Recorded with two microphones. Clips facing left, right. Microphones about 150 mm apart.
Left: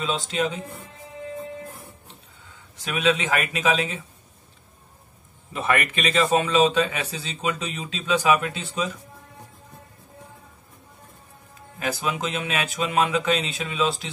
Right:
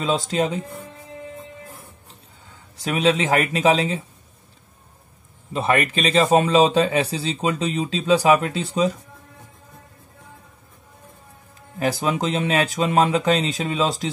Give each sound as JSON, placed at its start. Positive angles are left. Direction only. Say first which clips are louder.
{"t": 0.0, "sound": "a man's voice", "louder": "right 4 dB", "side_deg": -40}
{"t": 2.8, "sound": "a man's voice", "louder": "right 3 dB", "side_deg": -35}
{"t": 5.5, "sound": "a man's voice", "louder": "right 4 dB", "side_deg": -30}
{"t": 11.8, "sound": "a man's voice", "louder": "right 5 dB", "side_deg": -35}